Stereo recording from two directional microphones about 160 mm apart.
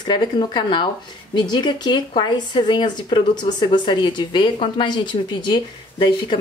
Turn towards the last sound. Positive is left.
turn(degrees=30)  # may be behind; listen again after turning